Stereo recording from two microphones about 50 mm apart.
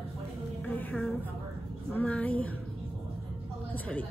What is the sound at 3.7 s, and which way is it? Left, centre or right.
Speech, left.